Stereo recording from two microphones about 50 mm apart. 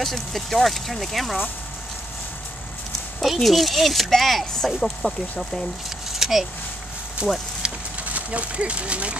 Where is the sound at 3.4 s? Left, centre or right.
Centre.